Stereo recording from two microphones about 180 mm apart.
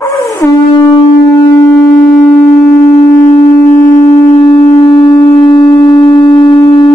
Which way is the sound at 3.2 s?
45° left (ahead or behind).